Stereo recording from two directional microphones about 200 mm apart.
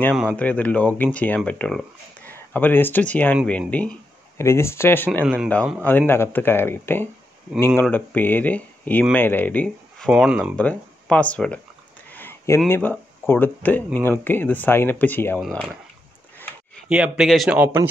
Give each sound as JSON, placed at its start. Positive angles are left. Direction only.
{"t": 0.1, "sound": "speech", "side_deg": 0}
{"t": 5.2, "sound": "speech", "side_deg": -5}
{"t": 5.5, "sound": "speech", "side_deg": 5}
{"t": 12.1, "sound": "a sound", "side_deg": 10}
{"t": 13.3, "sound": "speech", "side_deg": 10}
{"t": 16.9, "sound": "speech", "side_deg": -5}